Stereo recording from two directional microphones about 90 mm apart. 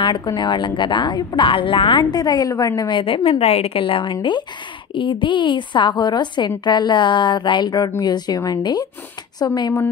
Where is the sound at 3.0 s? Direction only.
90° left.